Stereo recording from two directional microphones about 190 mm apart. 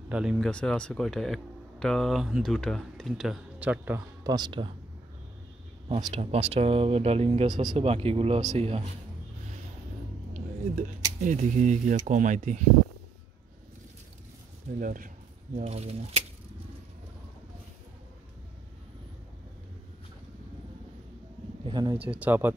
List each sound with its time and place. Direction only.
0.1 s speech: 5° right (ahead or behind); by 4.6 s 25° right (ahead or behind)
6.1 s speech: 35° right (ahead or behind)
10.3 s speech: 40° right (ahead or behind)
14.8 s speech: 45° right (ahead or behind)
15.5 s speech: 35° right (ahead or behind)
21.6 s a sound: 20° right (ahead or behind)
21.9 s speech: 5° right (ahead or behind)